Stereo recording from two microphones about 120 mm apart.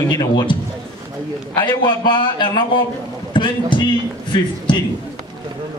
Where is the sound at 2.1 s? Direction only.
40° left (ahead or behind).